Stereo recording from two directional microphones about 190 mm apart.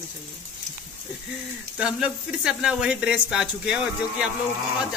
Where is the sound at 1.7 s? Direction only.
5° right (ahead or behind).